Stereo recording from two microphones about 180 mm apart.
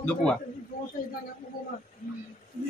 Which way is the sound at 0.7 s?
45° left (ahead or behind).